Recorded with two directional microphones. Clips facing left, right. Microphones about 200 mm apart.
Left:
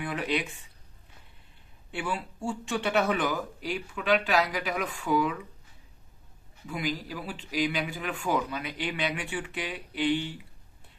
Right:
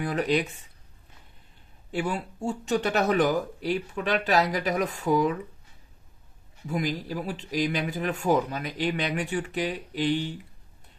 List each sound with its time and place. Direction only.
0.0 s speech: 40° right (ahead or behind)
1.9 s speech: 40° right (ahead or behind)
6.7 s speech: 40° right (ahead or behind)